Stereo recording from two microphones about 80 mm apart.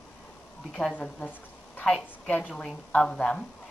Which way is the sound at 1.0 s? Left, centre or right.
Centre.